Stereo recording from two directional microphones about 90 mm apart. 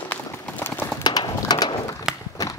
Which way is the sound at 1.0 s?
50° left (ahead or behind).